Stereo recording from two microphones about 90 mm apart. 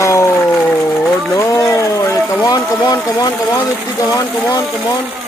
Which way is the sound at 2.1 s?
30° left (ahead or behind).